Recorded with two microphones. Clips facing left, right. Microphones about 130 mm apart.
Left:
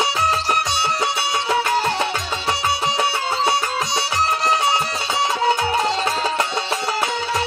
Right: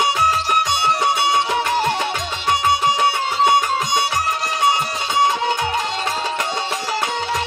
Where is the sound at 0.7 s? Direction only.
55° right (ahead or behind).